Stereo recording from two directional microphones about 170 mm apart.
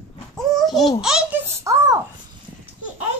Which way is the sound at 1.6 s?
20° right (ahead or behind).